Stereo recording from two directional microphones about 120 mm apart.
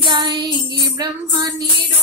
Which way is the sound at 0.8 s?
35° right (ahead or behind).